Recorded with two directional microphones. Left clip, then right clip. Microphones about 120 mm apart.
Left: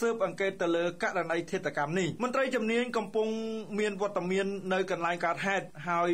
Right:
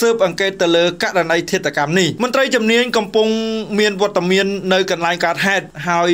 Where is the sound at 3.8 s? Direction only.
35° right (ahead or behind).